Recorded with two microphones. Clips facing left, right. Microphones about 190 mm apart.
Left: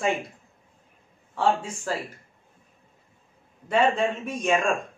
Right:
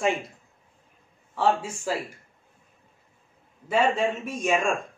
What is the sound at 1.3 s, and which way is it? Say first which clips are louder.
Speech: even; centre (ahead or behind).